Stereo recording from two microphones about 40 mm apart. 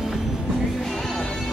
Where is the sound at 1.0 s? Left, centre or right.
Centre.